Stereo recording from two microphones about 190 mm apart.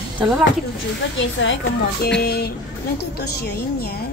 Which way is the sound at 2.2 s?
55° left (ahead or behind).